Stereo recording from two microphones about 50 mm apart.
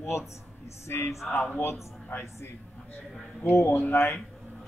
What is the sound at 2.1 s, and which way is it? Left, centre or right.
Speech, left.